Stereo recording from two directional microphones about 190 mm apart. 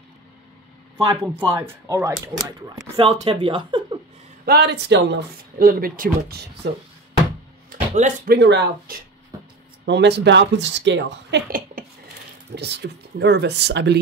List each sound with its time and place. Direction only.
0.9 s speech: 25° right (ahead or behind)
1.6 s speech: 10° right (ahead or behind)
3.0 s speech: 30° right (ahead or behind)
4.5 s speech: 60° right (ahead or behind)
7.7 s speech: 45° right (ahead or behind)
8.4 s speech: 65° right (ahead or behind); by 11.8 s 50° right (ahead or behind)
12.5 s speech: 60° right (ahead or behind)